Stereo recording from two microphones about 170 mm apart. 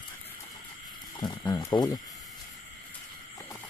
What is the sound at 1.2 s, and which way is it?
Speech, 20° left (ahead or behind).